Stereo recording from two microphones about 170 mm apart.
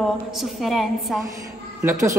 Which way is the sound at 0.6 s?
Centre (ahead or behind).